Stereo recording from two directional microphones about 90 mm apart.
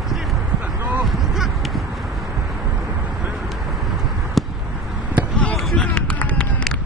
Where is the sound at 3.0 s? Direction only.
15° right (ahead or behind).